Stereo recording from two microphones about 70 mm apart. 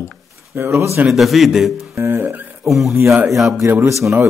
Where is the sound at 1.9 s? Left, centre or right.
Right.